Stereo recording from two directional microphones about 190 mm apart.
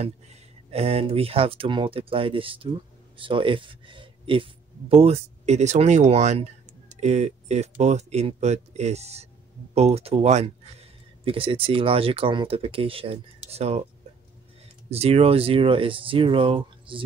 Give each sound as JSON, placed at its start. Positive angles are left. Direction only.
{"t": 0.0, "sound": "speech", "side_deg": -35}
{"t": 14.9, "sound": "speech", "side_deg": -30}